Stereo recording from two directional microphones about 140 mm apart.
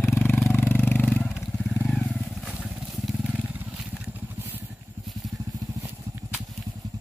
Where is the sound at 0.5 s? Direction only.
15° left (ahead or behind).